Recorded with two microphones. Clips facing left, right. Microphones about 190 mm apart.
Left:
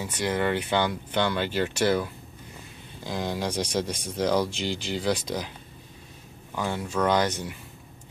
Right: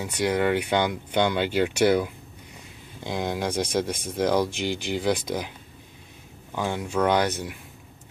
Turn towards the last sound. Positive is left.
turn(degrees=-10)  # may be behind; listen again after turning